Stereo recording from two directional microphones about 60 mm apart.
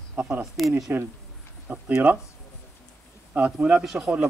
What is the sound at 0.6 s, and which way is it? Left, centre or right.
Speech, centre.